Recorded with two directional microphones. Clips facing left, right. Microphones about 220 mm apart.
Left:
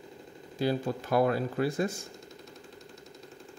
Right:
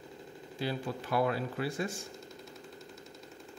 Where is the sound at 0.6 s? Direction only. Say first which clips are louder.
Left 6 dB; 45° left (ahead or behind).